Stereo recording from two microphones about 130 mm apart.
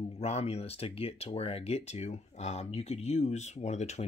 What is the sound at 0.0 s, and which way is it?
Speech, 55° left (ahead or behind).